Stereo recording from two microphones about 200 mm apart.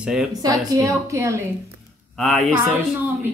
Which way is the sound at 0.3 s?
20° right (ahead or behind).